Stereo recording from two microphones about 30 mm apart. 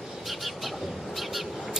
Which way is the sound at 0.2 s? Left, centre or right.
Centre.